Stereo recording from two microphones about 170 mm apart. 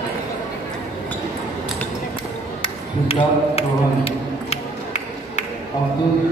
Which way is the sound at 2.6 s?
35° left (ahead or behind).